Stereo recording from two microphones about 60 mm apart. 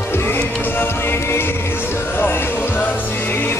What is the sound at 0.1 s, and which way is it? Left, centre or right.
Music, left.